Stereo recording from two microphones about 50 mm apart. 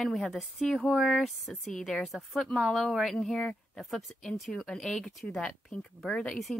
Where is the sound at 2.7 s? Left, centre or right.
Centre.